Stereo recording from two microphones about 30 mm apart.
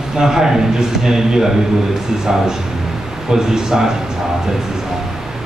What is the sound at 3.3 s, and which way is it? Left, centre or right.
Speech, centre.